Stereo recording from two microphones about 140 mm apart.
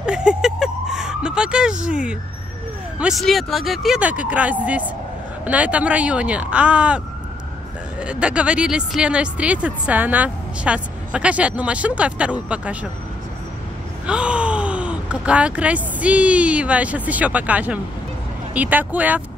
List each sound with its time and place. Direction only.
0.0 s vehicle: 5° right (ahead or behind)
3.0 s speech: centre (ahead or behind)
8.0 s speech: 10° right (ahead or behind)
14.0 s speech: 10° right (ahead or behind)